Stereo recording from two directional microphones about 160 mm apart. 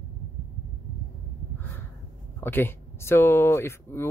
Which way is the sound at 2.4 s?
15° left (ahead or behind).